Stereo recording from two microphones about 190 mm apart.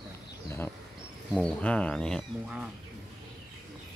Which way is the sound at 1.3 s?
5° left (ahead or behind).